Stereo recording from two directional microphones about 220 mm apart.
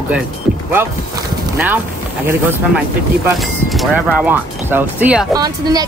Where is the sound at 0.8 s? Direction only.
10° right (ahead or behind).